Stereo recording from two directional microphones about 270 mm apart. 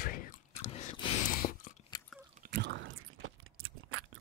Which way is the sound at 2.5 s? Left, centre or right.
Right.